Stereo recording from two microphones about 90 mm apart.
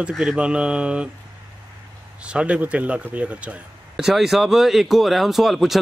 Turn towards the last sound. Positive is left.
turn(degrees=0)  # may be behind; listen again after turning